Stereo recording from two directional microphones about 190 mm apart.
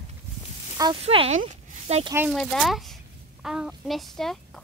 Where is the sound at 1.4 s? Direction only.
35° right (ahead or behind).